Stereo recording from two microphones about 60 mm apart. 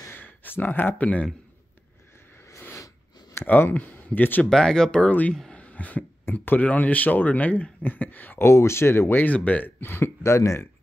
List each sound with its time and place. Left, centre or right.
0.1 s a sound: left
3.4 s speech: left
4.5 s speech: centre; by 8.5 s left
8.5 s speech: left
9.2 s speech: left
9.8 s speech: left
10.2 s speech: left